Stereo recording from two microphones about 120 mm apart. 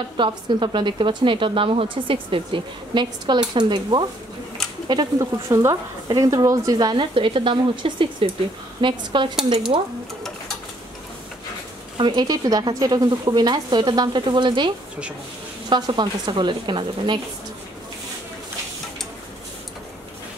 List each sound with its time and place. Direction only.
0.2 s speech: 40° right (ahead or behind)
12.0 s speech: 40° right (ahead or behind)
15.7 s speech: 40° right (ahead or behind)